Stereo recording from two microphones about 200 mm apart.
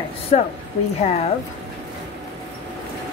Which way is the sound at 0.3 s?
35° left (ahead or behind).